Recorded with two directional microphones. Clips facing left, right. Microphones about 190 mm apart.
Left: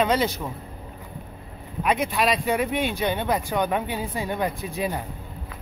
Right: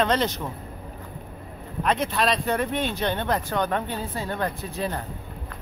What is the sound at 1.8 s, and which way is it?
Speech, 10° left (ahead or behind).